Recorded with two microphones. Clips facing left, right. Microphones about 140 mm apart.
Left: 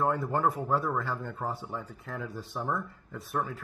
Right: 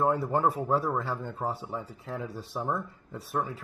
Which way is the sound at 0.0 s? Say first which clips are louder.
Right 2 dB; 10° right (ahead or behind).